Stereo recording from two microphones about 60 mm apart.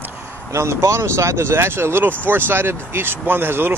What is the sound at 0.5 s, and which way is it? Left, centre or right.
Speech, right.